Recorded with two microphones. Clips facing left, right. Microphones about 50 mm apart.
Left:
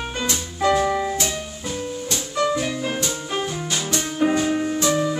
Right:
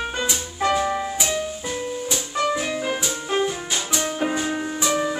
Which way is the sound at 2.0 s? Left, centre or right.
Centre.